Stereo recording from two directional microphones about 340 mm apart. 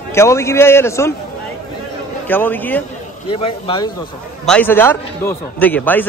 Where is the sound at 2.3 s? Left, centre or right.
Centre.